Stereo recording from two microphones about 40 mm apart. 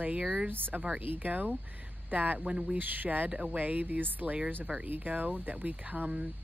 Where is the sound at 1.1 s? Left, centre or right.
Right.